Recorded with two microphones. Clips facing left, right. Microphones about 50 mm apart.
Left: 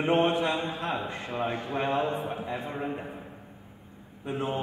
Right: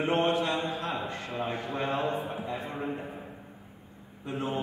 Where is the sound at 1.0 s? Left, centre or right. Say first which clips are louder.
Left 2 dB; centre.